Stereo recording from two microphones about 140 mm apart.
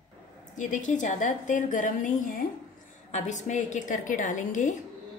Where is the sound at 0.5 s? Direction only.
60° left (ahead or behind).